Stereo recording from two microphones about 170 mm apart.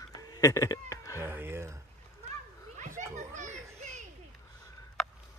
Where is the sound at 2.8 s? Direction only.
45° right (ahead or behind).